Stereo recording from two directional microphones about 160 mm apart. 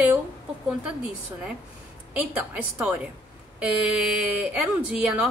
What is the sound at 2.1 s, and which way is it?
Speech, 10° right (ahead or behind).